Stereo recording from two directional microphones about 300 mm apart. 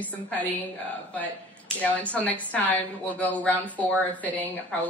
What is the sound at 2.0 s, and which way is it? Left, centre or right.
A woman's voice, centre.